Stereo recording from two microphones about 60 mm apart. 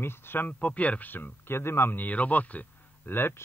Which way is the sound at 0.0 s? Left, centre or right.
Left.